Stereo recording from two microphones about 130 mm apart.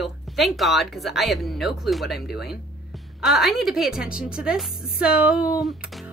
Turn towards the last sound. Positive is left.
turn(degrees=0)  # may be behind; listen again after turning